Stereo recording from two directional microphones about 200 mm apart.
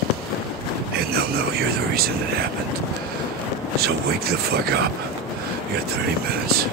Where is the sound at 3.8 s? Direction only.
50° right (ahead or behind).